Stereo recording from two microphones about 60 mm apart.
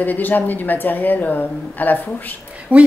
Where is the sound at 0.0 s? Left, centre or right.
Left.